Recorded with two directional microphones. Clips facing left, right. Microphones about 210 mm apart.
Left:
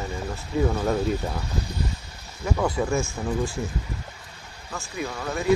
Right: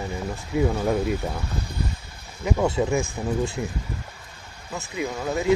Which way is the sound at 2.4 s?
25° right (ahead or behind).